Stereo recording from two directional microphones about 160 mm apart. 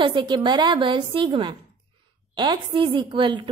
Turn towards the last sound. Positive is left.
turn(degrees=-30)  # may be behind; listen again after turning